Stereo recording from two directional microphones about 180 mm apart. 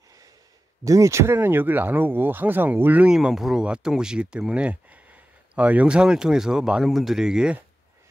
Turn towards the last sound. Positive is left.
turn(degrees=-5)  # may be behind; listen again after turning